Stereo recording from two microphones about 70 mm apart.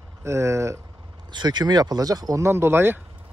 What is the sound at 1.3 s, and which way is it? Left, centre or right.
Speech, right.